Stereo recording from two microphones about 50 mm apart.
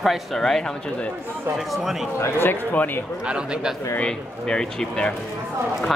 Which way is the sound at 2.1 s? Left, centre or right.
Left.